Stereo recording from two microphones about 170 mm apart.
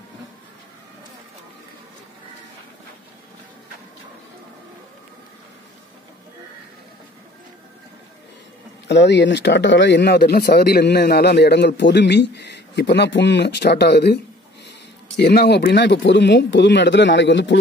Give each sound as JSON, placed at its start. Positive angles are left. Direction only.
{"t": 8.8, "sound": "speech", "side_deg": 90}